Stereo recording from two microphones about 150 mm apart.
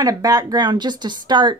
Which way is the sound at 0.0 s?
25° right (ahead or behind).